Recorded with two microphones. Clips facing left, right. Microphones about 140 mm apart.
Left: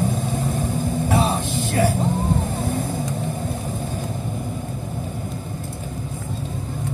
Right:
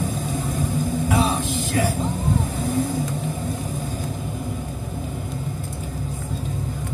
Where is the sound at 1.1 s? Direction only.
45° left (ahead or behind).